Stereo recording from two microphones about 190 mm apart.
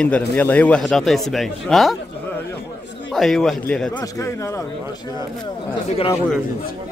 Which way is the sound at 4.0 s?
15° left (ahead or behind).